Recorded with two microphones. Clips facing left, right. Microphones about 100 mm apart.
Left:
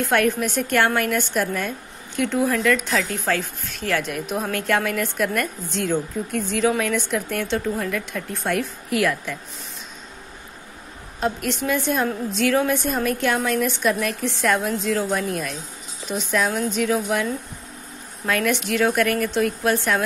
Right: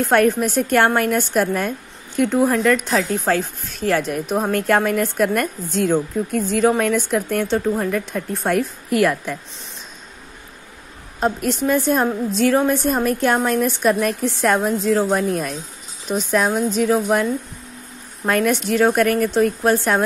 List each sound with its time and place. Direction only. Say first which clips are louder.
0.1 s speech: right 5 dB; 40° right (ahead or behind)
11.1 s speech: right 4 dB; 40° right (ahead or behind)